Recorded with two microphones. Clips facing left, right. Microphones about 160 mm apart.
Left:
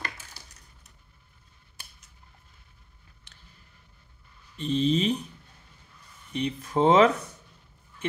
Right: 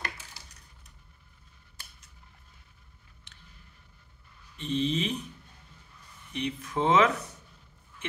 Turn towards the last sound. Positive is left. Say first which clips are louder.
# left 5 dB
turn(degrees=35)  # may be behind; listen again after turning